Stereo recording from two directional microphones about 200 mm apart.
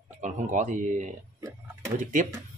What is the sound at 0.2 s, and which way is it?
Speech, 35° right (ahead or behind).